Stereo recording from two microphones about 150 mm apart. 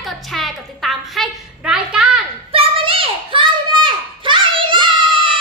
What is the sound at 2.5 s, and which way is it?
Children playing, 40° right (ahead or behind).